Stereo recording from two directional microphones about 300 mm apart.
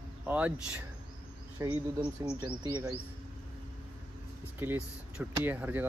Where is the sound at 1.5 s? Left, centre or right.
Centre.